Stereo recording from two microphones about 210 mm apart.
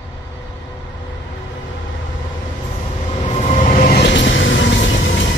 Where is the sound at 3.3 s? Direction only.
35° left (ahead or behind); by 5.0 s 65° left (ahead or behind).